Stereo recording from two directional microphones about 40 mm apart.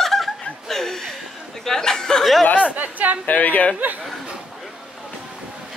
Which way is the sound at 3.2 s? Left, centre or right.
Left.